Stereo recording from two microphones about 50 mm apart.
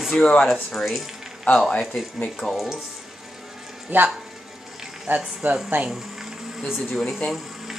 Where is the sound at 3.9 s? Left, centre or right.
Right.